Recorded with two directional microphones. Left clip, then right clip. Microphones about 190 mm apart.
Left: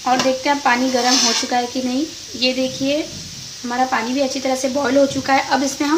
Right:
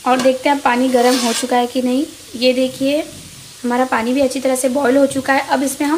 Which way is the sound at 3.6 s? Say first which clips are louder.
Right 3 dB; 30° right (ahead or behind).